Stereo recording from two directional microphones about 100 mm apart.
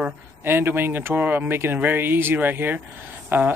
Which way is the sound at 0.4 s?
20° right (ahead or behind).